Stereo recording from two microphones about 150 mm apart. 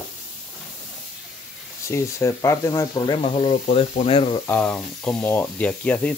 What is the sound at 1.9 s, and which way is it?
Speech, 20° left (ahead or behind).